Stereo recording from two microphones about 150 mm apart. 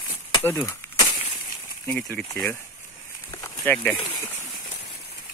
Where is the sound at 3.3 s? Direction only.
20° left (ahead or behind).